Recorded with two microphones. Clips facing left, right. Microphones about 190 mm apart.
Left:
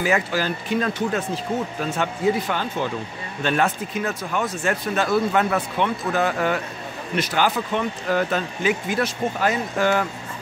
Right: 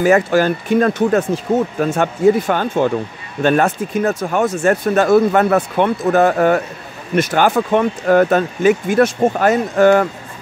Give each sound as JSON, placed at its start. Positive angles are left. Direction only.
{"t": 0.0, "sound": "speech", "side_deg": -50}